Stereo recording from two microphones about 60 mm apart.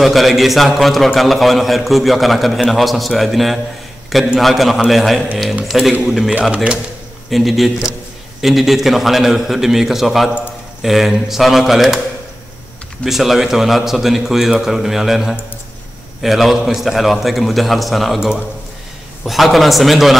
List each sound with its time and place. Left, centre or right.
0.0 s a man's voice: centre
6.5 s speech: centre
7.2 s a man's voice: centre
13.0 s a man's voice: centre